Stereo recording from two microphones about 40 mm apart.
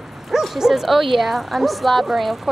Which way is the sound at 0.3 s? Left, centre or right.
Centre.